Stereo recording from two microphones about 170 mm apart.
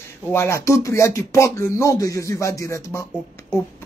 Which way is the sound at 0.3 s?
15° left (ahead or behind).